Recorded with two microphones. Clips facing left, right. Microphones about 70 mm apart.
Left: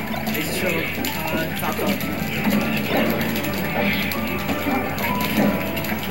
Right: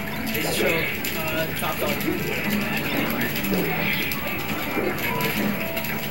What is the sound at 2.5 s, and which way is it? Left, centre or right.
Music, left.